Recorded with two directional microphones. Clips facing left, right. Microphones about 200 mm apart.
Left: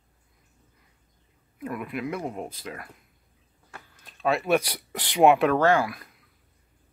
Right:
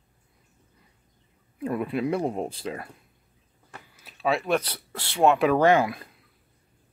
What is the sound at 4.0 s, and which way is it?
Speech, 5° right (ahead or behind).